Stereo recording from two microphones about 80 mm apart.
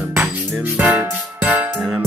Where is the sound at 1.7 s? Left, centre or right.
Centre.